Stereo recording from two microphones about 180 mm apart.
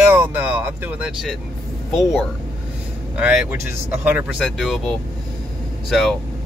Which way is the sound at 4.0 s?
10° right (ahead or behind).